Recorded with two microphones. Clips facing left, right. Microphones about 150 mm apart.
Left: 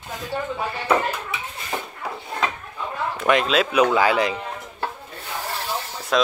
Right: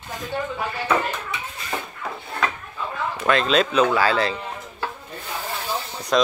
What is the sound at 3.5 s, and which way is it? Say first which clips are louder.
Speech: even; 10° left (ahead or behind).